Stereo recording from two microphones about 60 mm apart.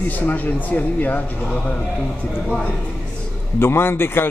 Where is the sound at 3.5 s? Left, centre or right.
Left.